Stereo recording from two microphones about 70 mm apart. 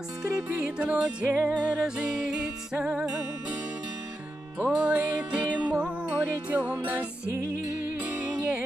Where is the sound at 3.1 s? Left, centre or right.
Right.